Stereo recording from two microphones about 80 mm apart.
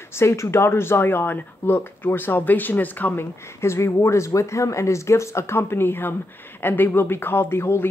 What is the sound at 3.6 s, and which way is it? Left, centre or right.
Speech, left.